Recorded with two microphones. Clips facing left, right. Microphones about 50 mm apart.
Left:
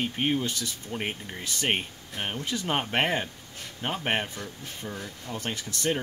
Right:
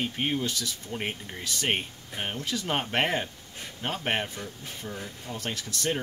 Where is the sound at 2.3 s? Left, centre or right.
Left.